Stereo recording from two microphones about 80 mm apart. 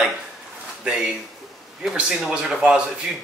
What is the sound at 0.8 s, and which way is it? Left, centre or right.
Speech, centre.